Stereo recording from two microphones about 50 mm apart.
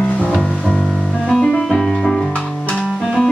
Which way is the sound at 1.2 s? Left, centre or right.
Centre.